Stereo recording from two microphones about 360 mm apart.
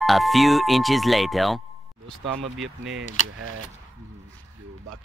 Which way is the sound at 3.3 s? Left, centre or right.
Right.